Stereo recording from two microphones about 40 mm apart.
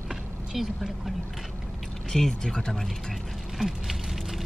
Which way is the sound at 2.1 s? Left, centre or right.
Centre.